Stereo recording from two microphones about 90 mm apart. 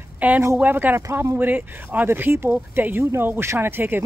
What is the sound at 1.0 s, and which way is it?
Speech, 35° right (ahead or behind).